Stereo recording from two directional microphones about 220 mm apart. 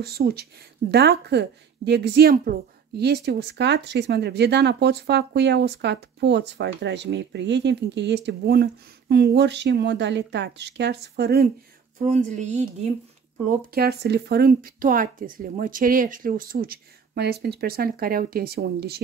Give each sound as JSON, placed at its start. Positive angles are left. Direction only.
{"t": 0.0, "sound": "speech", "side_deg": -45}
{"t": 12.0, "sound": "speech", "side_deg": -30}
{"t": 13.5, "sound": "speech", "side_deg": -45}